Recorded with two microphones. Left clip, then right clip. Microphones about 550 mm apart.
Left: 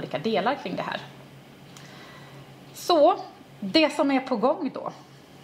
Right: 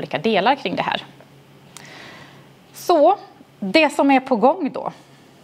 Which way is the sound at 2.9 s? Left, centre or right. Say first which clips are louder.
Right 5 dB; right.